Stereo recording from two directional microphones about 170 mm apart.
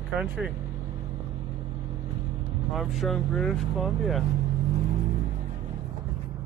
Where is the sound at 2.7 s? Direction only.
Centre (ahead or behind).